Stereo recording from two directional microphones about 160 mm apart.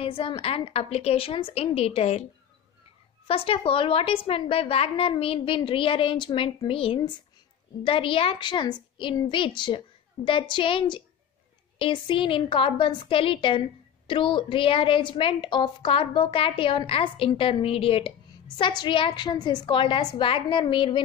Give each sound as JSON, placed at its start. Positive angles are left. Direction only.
{"t": 0.0, "sound": "a woman's voice", "side_deg": 35}
{"t": 3.3, "sound": "a woman's voice", "side_deg": 35}